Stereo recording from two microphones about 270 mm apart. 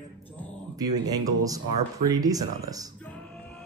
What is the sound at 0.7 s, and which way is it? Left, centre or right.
Speech, centre.